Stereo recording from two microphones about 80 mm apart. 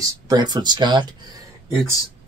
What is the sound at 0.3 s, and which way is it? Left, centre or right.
Speech, right.